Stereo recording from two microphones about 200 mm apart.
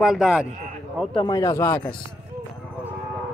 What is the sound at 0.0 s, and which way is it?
Speech, centre (ahead or behind).